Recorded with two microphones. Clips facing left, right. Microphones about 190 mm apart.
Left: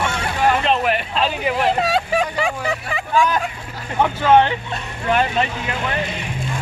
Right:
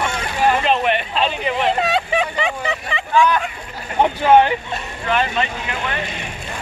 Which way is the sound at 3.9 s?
20° right (ahead or behind).